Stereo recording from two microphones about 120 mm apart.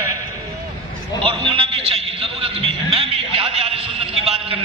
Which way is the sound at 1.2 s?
50° right (ahead or behind).